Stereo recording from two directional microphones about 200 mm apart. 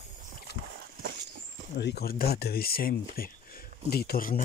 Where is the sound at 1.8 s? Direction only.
55° left (ahead or behind).